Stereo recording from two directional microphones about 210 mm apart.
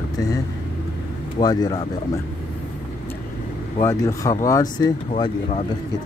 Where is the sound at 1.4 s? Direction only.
20° left (ahead or behind).